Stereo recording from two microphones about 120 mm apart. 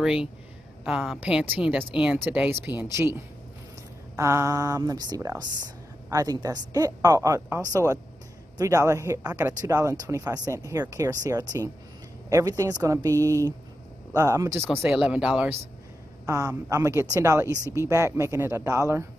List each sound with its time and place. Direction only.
0.0 s a woman's voice: 5° right (ahead or behind)
1.2 s speech: 15° right (ahead or behind)
4.2 s speech: 25° right (ahead or behind)
9.2 s speech: 10° right (ahead or behind)
9.5 s speech: 30° right (ahead or behind)
15.0 s speech: 5° right (ahead or behind)
16.3 s speech: 25° right (ahead or behind)